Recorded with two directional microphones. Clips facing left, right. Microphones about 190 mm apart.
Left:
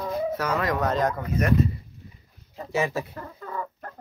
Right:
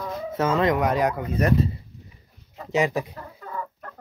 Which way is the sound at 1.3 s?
35° right (ahead or behind).